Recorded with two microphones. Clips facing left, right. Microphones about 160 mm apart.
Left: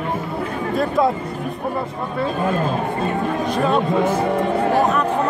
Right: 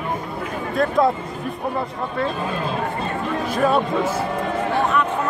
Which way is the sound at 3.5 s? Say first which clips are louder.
Right 2 dB; 5° right (ahead or behind).